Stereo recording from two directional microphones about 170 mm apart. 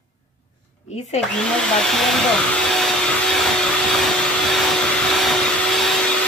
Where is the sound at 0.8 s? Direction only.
40° left (ahead or behind).